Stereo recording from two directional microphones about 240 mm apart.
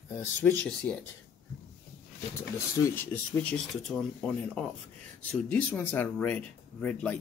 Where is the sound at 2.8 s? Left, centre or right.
Centre.